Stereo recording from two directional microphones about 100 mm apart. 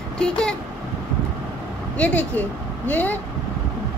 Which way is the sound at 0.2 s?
10° left (ahead or behind).